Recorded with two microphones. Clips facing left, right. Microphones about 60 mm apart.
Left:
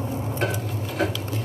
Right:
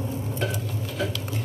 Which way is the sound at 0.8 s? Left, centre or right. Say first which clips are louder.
Left 5 dB; left.